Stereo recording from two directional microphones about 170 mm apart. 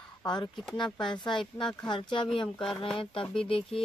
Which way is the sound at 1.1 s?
30° left (ahead or behind).